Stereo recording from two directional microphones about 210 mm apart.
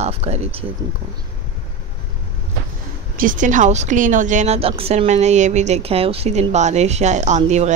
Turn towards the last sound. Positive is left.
turn(degrees=-35)  # may be behind; listen again after turning